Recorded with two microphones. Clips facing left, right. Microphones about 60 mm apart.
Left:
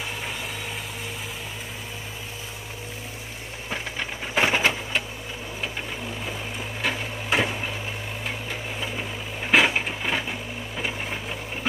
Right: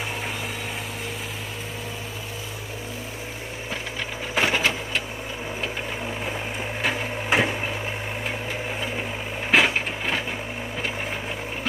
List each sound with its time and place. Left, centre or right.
4.4 s sewing machine: centre
6.8 s printer: centre
9.5 s a sound: centre